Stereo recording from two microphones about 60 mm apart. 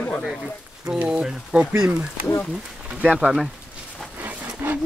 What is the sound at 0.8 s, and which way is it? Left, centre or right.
Speech, centre.